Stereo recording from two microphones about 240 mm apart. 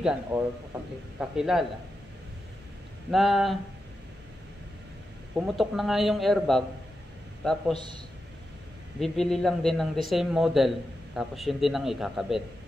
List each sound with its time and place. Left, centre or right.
0.0 s speech: centre
3.1 s speech: centre
5.3 s speech: centre
7.7 s a man's voice: centre
9.0 s speech: centre